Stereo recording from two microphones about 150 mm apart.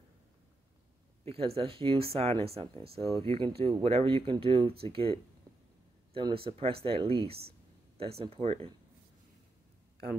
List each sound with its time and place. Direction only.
1.2 s speech: 40° right (ahead or behind)